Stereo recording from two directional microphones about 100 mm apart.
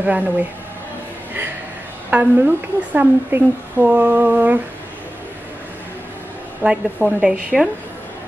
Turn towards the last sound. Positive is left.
turn(degrees=-5)  # may be behind; listen again after turning